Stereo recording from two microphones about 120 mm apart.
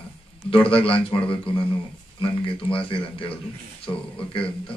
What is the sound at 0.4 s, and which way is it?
A man's voice, 50° left (ahead or behind).